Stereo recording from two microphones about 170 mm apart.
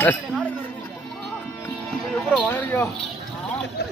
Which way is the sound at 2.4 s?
10° left (ahead or behind).